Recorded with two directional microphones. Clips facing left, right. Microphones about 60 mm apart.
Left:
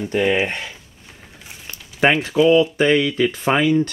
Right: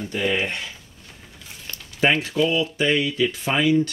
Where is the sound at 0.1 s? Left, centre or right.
Left.